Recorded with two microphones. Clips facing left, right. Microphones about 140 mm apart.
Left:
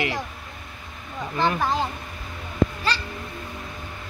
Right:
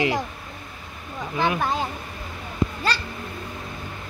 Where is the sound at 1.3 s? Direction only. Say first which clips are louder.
Even; 5° right (ahead or behind).